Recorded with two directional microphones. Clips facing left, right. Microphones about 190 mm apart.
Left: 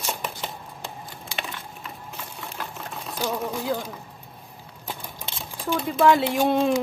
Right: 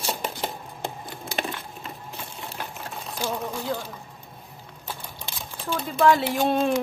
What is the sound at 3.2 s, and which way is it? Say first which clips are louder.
Speech: left 2 dB; 15° left (ahead or behind).